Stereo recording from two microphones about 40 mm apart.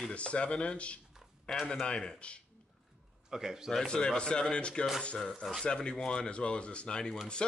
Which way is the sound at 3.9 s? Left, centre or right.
Left.